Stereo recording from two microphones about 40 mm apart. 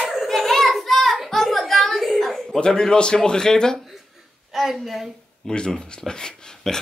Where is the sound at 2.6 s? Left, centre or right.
Centre.